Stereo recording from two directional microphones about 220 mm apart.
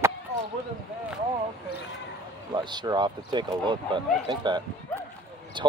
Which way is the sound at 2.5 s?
20° right (ahead or behind).